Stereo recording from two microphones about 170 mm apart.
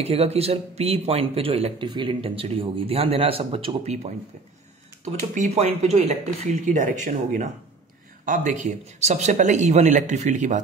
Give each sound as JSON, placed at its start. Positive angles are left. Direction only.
{"t": 0.0, "sound": "speech", "side_deg": -35}